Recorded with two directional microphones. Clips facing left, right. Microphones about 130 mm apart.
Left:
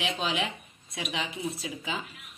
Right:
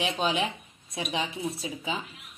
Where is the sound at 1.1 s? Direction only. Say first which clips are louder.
Right 2 dB; 35° right (ahead or behind).